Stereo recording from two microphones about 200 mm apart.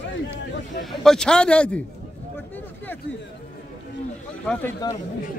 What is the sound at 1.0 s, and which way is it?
Speech, 5° left (ahead or behind).